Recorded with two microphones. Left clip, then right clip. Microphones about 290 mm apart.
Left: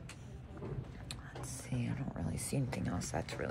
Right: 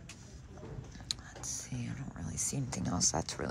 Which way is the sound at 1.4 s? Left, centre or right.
Right.